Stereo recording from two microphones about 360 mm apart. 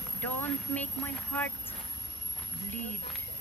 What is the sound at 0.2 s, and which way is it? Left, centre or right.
Speech, centre.